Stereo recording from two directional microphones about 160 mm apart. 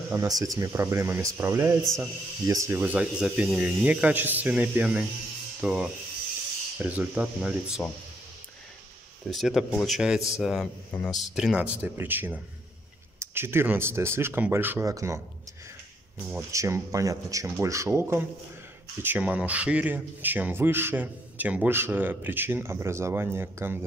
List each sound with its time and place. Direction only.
0.1 s speech: 20° right (ahead or behind)
9.3 s speech: centre (ahead or behind); by 15.1 s 20° right (ahead or behind)
16.3 s speech: 15° right (ahead or behind)